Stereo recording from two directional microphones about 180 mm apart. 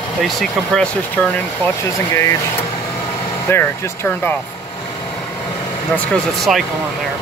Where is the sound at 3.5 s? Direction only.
15° left (ahead or behind).